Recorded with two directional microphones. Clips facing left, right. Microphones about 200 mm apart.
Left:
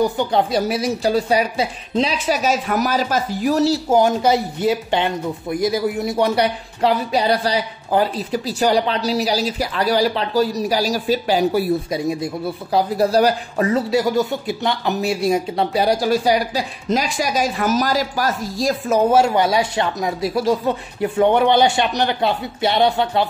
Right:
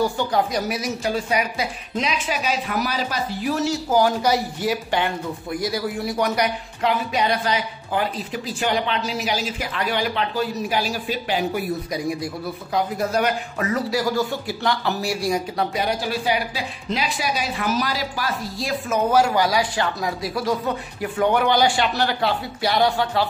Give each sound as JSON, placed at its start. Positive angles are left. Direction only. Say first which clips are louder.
{"t": 0.0, "sound": "a woman's voice", "louder": "left 3 dB", "side_deg": 20}